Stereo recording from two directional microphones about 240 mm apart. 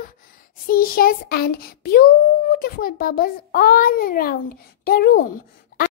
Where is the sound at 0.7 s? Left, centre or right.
Left.